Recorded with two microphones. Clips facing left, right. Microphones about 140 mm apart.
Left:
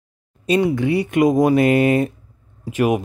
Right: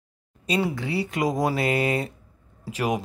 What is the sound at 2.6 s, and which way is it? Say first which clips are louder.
Speech: left 8 dB; 15° left (ahead or behind).